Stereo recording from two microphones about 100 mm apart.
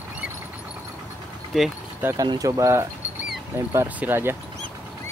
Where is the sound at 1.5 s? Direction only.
Centre (ahead or behind).